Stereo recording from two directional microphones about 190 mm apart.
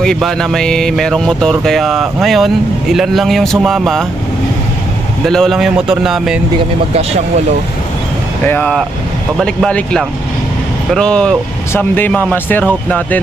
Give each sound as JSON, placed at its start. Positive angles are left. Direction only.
{"t": 0.0, "sound": "speech", "side_deg": 5}
{"t": 5.2, "sound": "speech", "side_deg": 0}
{"t": 6.9, "sound": "speech", "side_deg": -30}
{"t": 8.5, "sound": "speech", "side_deg": 5}